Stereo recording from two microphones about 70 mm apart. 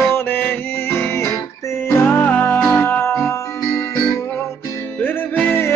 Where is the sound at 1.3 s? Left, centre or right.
Left.